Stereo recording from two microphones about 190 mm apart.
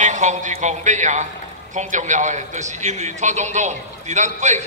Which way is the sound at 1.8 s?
40° right (ahead or behind).